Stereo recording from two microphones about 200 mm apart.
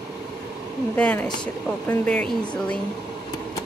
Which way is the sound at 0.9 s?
5° left (ahead or behind).